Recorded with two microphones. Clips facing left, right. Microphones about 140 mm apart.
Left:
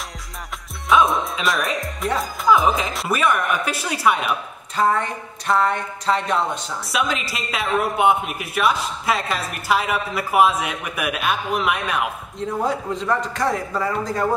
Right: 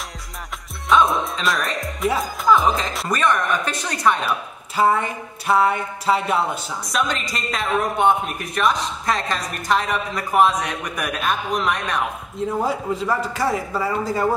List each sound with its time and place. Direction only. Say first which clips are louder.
0.8 s speech: even; centre (ahead or behind)
4.3 s speech: even; 5° right (ahead or behind)
7.0 s speech: even; 5° left (ahead or behind)